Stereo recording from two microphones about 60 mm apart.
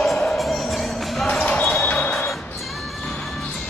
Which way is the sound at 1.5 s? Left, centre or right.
Centre.